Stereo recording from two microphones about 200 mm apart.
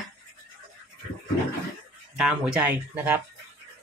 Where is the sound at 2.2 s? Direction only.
10° right (ahead or behind).